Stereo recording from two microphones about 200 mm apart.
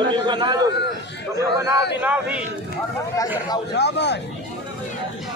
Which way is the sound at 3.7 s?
60° left (ahead or behind).